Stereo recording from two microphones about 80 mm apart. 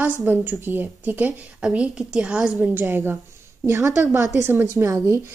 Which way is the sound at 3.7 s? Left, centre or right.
Right.